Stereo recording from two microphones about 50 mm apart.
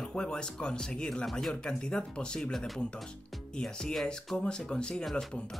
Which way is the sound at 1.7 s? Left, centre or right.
Centre.